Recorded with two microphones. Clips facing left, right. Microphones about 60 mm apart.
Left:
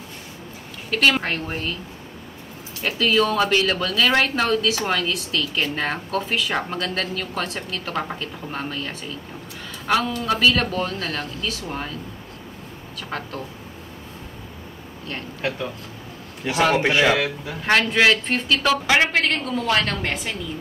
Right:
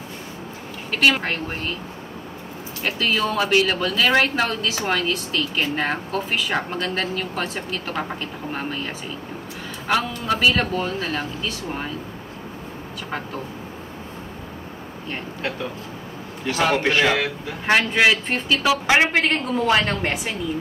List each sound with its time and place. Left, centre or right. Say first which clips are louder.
0.9 s speech: even; centre
2.8 s speech: left 3 dB; centre
16.6 s speech: left 1 dB; centre
18.9 s a woman's voice: right 1 dB; centre